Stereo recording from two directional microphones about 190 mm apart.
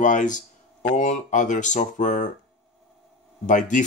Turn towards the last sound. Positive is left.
turn(degrees=40)  # may be behind; listen again after turning